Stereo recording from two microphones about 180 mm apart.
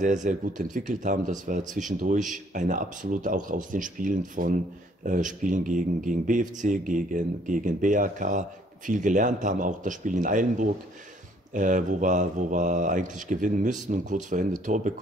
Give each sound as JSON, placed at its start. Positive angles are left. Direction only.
{"t": 0.0, "sound": "speech", "side_deg": -45}